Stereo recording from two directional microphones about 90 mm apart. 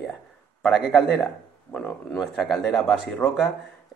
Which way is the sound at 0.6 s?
5° right (ahead or behind).